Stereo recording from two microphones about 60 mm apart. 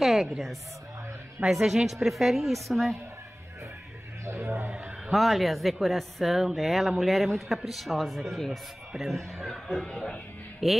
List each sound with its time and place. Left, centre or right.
0.0 s a woman's voice: centre
4.3 s a man's voice: right
5.1 s speech: centre
10.6 s speech: centre